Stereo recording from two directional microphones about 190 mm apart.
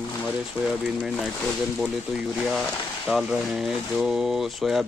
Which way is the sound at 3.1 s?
Centre (ahead or behind).